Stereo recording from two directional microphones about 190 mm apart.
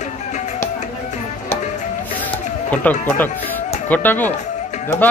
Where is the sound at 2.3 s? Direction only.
10° left (ahead or behind).